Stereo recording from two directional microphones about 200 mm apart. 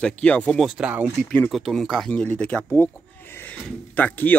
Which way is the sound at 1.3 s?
5° left (ahead or behind).